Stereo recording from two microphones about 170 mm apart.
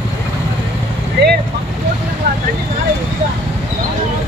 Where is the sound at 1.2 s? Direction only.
85° right.